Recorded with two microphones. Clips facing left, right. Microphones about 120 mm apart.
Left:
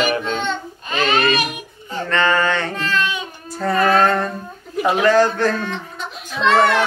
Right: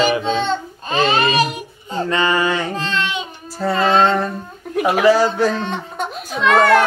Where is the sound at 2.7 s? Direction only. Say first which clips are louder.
Even; 25° right (ahead or behind).